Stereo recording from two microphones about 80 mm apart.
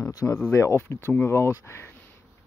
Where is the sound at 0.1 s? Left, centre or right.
Left.